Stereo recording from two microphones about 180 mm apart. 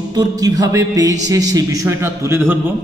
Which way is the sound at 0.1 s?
20° right (ahead or behind).